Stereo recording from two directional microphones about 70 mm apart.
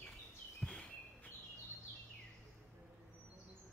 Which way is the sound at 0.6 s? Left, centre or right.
Centre.